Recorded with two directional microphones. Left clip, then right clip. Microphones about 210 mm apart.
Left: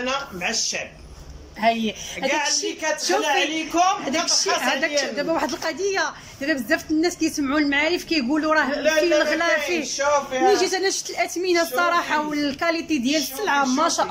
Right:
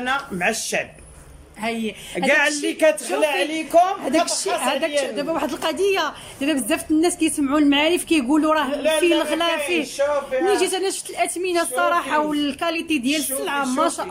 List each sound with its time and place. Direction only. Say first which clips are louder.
0.0 s speech: right 3 dB; 45° right (ahead or behind)
1.6 s a woman's voice: left 5 dB; centre (ahead or behind)
2.2 s speech: right 4 dB; 45° right (ahead or behind)
4.0 s a woman's voice: right 1 dB; 20° right (ahead or behind)